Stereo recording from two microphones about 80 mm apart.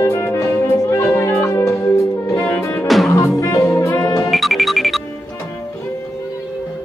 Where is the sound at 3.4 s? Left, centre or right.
Left.